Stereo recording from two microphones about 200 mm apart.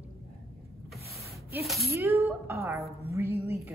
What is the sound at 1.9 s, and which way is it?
Speech, 10° right (ahead or behind).